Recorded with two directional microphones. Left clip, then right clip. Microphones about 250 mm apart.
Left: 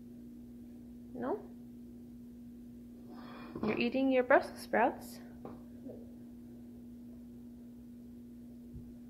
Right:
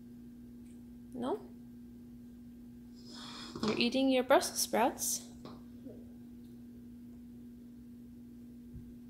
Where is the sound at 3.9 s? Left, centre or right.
Centre.